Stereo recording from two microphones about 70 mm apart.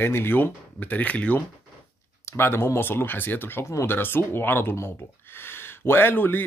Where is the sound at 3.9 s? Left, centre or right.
Left.